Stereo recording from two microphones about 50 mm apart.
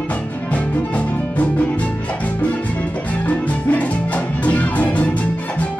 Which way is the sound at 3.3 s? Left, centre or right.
Left.